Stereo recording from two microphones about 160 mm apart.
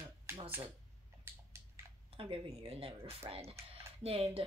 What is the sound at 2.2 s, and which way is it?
Speech, 35° right (ahead or behind).